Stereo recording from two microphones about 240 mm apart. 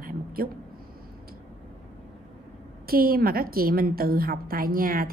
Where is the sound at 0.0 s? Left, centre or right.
Right.